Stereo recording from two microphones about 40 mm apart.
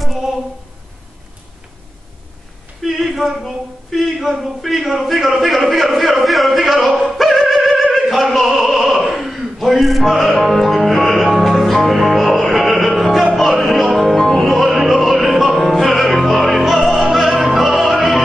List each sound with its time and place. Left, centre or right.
2.8 s speech: centre
7.0 s opera: centre
11.3 s music: centre